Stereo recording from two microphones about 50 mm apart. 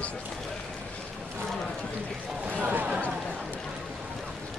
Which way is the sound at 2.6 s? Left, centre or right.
Right.